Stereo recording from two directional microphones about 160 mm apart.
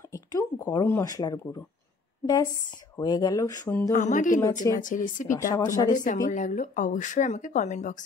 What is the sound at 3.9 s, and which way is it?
Speech, 50° left (ahead or behind).